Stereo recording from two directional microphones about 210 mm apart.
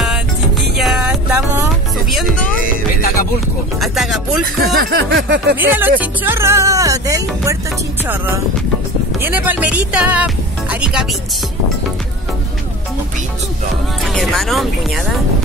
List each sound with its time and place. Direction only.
0.7 s music: centre (ahead or behind)
3.8 s speech: centre (ahead or behind)
4.6 s speech: 50° right (ahead or behind)
5.6 s speech: 10° right (ahead or behind)
9.2 s speech: 10° right (ahead or behind)
14.0 s speech: centre (ahead or behind)